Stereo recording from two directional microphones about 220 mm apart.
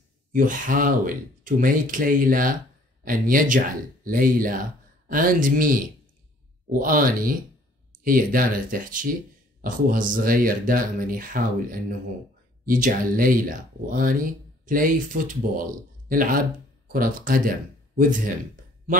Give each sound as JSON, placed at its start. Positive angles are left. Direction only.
{"t": 0.3, "sound": "speech", "side_deg": -40}
{"t": 12.6, "sound": "speech", "side_deg": -40}